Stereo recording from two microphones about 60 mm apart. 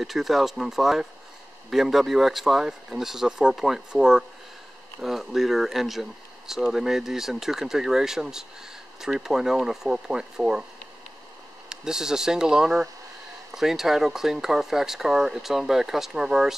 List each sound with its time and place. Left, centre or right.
0.0 s speech: centre
11.7 s speech: centre